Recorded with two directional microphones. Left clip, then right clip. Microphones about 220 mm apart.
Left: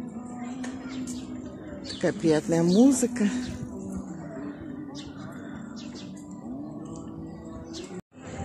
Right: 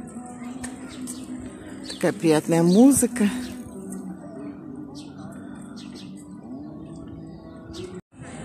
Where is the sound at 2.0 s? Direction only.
20° right (ahead or behind).